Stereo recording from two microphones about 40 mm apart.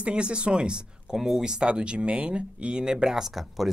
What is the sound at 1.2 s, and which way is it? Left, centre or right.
Speech, centre.